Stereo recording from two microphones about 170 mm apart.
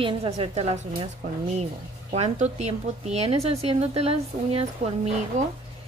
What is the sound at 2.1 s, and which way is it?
Speech, 40° right (ahead or behind).